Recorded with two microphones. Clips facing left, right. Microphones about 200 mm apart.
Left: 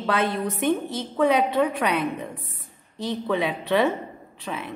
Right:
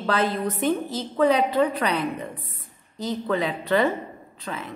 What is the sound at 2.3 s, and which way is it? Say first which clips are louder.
Speech: even; 50° left (ahead or behind).